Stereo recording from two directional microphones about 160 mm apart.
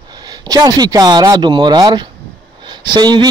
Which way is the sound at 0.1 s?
25° right (ahead or behind).